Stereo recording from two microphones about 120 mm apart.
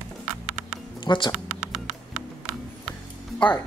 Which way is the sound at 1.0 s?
40° left (ahead or behind).